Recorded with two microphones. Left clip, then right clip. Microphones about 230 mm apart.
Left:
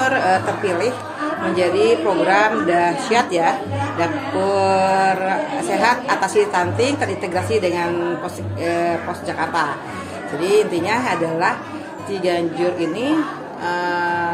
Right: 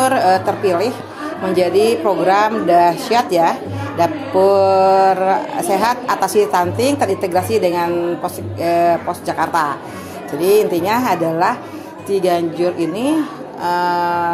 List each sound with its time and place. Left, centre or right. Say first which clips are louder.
0.0 s a woman's voice: right 3 dB; right
8.5 s music: right 6 dB; right
9.4 s a woman's voice: right 3 dB; right
13.7 s music: right 4 dB; right